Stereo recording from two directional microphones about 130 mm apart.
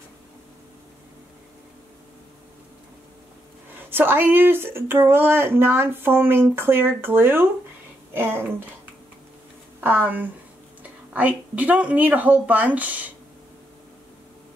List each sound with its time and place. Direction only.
3.9 s speech: 15° right (ahead or behind)
9.8 s speech: 15° right (ahead or behind)